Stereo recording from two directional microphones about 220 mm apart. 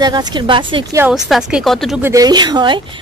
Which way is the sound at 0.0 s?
20° right (ahead or behind).